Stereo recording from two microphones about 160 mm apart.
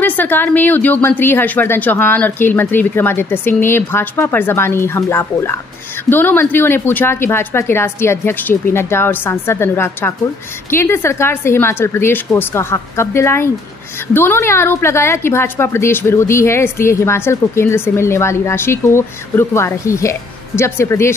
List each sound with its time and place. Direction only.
0.0 s a woman's voice: 10° left (ahead or behind)